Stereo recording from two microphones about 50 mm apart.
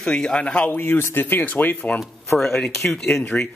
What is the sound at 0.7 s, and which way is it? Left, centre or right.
Speech, left.